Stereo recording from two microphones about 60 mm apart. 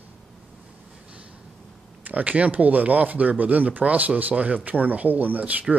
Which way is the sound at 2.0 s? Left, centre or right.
Right.